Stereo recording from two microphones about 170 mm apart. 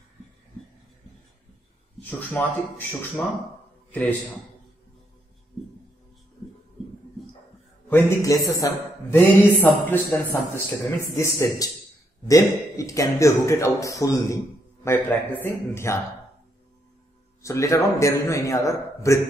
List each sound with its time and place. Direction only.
2.0 s a man's voice: 10° left (ahead or behind)
7.9 s a man's voice: 20° left (ahead or behind)
17.4 s a man's voice: 20° left (ahead or behind)